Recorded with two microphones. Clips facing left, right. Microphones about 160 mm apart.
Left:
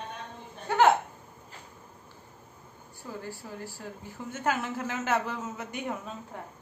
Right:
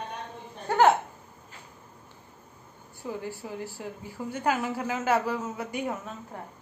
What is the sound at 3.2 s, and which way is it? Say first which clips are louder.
A woman's voice: right 4 dB; 15° right (ahead or behind).